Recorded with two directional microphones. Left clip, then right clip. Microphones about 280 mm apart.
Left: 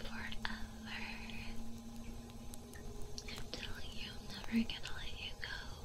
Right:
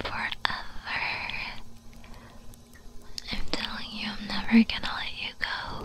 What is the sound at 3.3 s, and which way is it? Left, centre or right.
Whispering, right.